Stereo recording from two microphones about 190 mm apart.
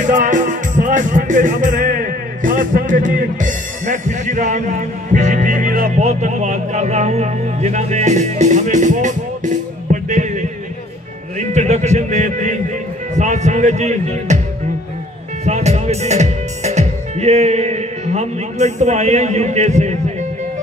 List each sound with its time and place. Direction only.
0.0 s music: 40° right (ahead or behind)
11.3 s a sound: 35° right (ahead or behind)
13.1 s speech: 40° right (ahead or behind)
15.4 s speech: 35° right (ahead or behind)